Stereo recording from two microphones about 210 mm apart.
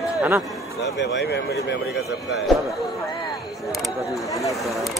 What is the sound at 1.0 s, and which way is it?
Speech, 55° left (ahead or behind).